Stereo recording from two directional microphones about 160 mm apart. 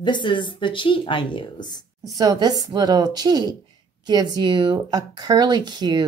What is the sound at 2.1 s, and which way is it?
Speech, 25° right (ahead or behind).